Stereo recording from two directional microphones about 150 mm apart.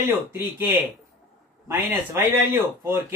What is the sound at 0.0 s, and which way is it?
A man's voice, 15° right (ahead or behind).